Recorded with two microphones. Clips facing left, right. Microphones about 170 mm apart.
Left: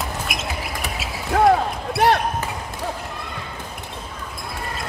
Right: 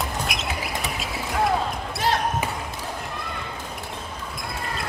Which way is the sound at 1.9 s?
60° left (ahead or behind).